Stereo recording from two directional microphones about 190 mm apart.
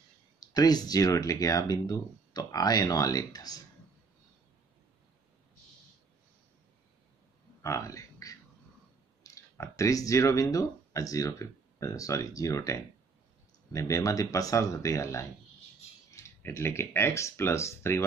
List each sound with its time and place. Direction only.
0.4 s speech: 20° left (ahead or behind)
7.6 s a sound: 15° left (ahead or behind)
9.2 s speech: 15° left (ahead or behind)